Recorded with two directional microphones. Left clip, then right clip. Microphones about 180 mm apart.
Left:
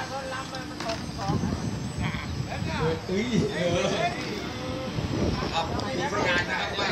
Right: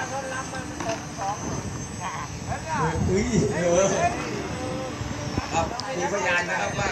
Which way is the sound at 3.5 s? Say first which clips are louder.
Right 6 dB; 45° right (ahead or behind).